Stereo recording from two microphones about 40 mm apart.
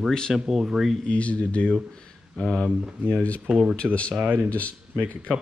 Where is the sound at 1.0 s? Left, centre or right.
Left.